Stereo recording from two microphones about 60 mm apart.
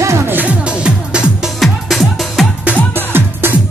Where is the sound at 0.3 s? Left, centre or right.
Right.